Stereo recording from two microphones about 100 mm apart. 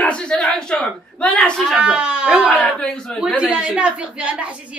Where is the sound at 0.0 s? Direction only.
10° left (ahead or behind).